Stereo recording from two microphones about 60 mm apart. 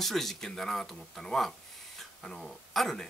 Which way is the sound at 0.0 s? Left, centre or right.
Centre.